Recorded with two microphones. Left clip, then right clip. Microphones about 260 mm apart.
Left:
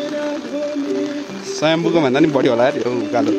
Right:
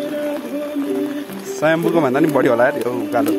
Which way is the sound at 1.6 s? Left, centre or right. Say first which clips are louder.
Even; left.